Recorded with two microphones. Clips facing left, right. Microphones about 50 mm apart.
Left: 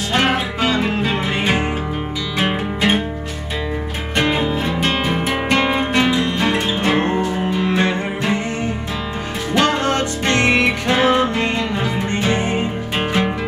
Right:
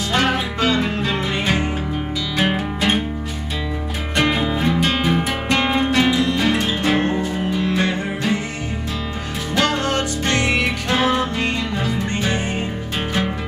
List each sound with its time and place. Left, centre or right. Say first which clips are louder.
0.1 s music: left 2 dB; centre
4.2 s music: even; centre
5.8 s music: even; centre
6.8 s music: left 2 dB; left
9.5 s music: left 3 dB; left